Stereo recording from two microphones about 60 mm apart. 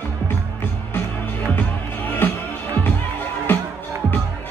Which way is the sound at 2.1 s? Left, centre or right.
Left.